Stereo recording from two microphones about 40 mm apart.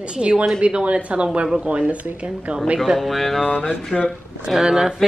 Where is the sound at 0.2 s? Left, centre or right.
Right.